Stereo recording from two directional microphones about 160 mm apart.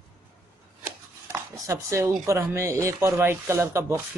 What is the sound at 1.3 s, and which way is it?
Dishes, 20° right (ahead or behind).